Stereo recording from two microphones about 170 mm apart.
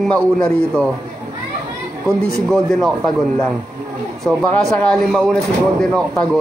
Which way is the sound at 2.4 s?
Centre (ahead or behind).